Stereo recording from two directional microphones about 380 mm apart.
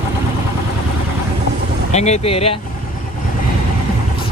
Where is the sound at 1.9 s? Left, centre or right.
Centre.